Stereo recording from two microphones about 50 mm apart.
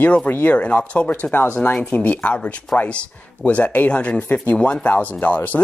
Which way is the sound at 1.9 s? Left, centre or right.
Left.